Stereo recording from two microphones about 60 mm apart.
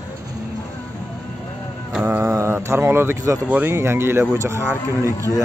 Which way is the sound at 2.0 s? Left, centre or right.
Right.